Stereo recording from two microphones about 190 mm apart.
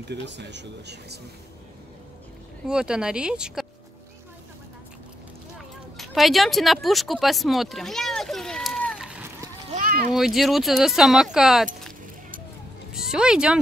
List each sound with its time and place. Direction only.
0.1 s speech: 65° right (ahead or behind)
2.6 s speech: 5° right (ahead or behind)
5.9 s a sound: centre (ahead or behind)
9.7 s a sound: 45° right (ahead or behind)
10.1 s speech: centre (ahead or behind)
12.9 s speech: 5° right (ahead or behind)